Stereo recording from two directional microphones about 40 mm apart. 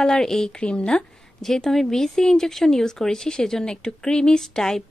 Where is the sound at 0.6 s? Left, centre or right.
Left.